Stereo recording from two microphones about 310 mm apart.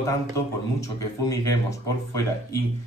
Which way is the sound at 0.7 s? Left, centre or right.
Centre.